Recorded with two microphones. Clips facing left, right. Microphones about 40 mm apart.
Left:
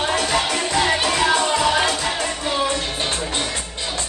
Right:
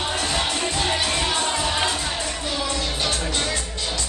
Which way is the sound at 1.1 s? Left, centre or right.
Left.